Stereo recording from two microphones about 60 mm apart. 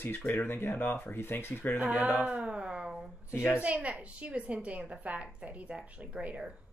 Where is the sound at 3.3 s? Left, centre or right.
Left.